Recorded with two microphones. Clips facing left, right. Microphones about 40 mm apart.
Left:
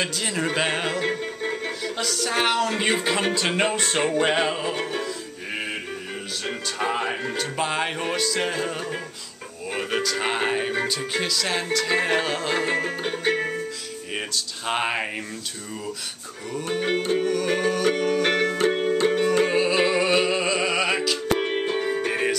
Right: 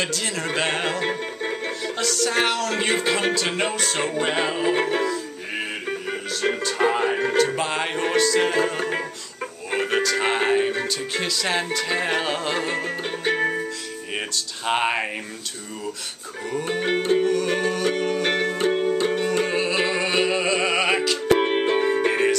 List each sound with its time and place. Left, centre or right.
0.0 s speech: centre
1.0 s speech: centre
3.7 s music: left
4.7 s music: right
7.5 s speech: centre
8.7 s music: right
9.8 s speech: centre
16.5 s music: centre
21.3 s music: right